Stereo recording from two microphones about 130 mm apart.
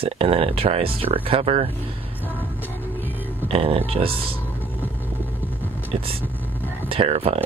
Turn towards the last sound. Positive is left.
turn(degrees=-50)  # may be behind; listen again after turning